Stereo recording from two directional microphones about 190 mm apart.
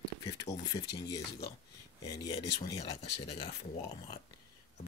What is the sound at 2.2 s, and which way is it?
Speech, 20° left (ahead or behind).